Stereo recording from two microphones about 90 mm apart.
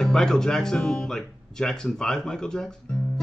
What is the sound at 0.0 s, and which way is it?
Speech, 5° left (ahead or behind).